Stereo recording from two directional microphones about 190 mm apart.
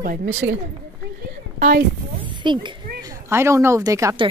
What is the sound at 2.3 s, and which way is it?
Speech, 25° right (ahead or behind).